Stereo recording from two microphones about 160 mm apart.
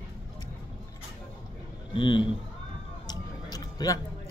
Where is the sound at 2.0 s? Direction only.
30° left (ahead or behind).